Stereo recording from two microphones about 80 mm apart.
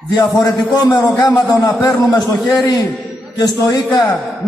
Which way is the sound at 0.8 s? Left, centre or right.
Left.